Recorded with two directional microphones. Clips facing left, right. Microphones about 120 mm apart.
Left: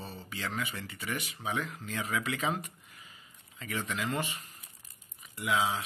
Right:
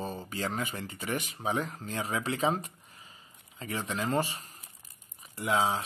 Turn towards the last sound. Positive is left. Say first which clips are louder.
# right 2 dB
turn(degrees=-40)  # may be behind; listen again after turning